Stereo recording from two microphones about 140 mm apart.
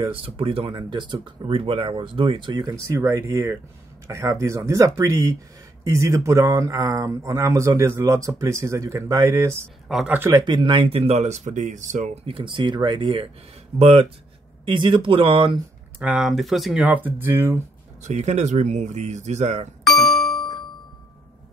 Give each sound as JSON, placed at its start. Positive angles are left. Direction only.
{"t": 0.0, "sound": "speech", "side_deg": -40}
{"t": 9.8, "sound": "speech", "side_deg": 0}
{"t": 10.3, "sound": "speech", "side_deg": -35}
{"t": 12.3, "sound": "speech", "side_deg": -40}
{"t": 14.6, "sound": "speech", "side_deg": -35}
{"t": 16.0, "sound": "speech", "side_deg": -5}
{"t": 16.8, "sound": "speech", "side_deg": -15}
{"t": 18.0, "sound": "speech", "side_deg": -55}
{"t": 19.8, "sound": "doorbell", "side_deg": 0}